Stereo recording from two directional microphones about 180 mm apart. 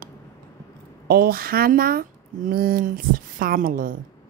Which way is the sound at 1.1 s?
55° right (ahead or behind).